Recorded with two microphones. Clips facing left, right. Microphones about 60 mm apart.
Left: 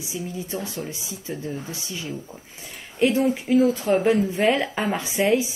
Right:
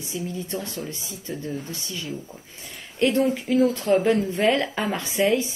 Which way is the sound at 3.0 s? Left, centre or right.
Centre.